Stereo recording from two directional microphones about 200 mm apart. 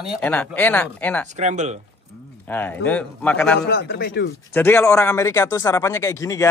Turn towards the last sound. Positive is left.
turn(degrees=15)  # may be behind; listen again after turning